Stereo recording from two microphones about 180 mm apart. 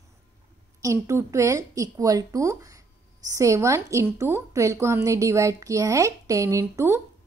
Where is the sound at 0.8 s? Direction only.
15° right (ahead or behind).